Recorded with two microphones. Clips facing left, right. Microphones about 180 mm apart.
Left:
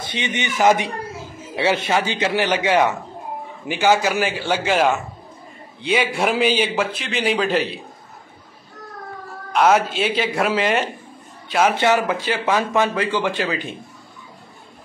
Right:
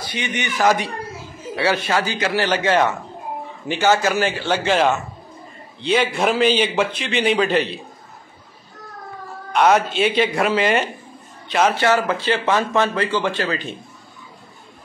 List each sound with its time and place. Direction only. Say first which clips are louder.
0.0 s a man's voice: left 1 dB; 25° left (ahead or behind); by 7.8 s 5° left (ahead or behind)
9.5 s a man's voice: even; centre (ahead or behind)